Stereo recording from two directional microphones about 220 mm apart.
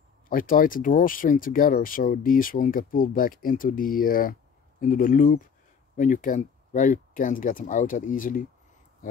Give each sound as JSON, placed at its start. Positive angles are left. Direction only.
{"t": 0.3, "sound": "speech", "side_deg": 40}